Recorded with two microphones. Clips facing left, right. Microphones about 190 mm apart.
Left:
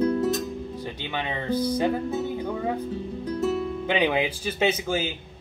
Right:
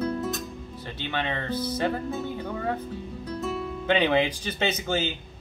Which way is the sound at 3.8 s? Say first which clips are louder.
Right 3 dB; 10° left (ahead or behind).